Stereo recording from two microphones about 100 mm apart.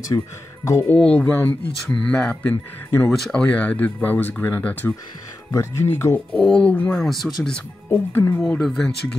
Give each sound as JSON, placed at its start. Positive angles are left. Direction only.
{"t": 0.1, "sound": "speech", "side_deg": 40}
{"t": 1.0, "sound": "speech", "side_deg": 15}
{"t": 6.3, "sound": "speech", "side_deg": 10}
{"t": 7.9, "sound": "speech", "side_deg": 20}
{"t": 8.5, "sound": "speech", "side_deg": 5}